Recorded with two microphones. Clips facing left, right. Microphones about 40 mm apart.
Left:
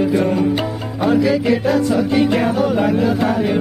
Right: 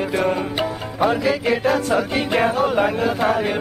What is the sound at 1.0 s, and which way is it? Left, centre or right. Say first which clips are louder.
Music: left 3 dB; centre.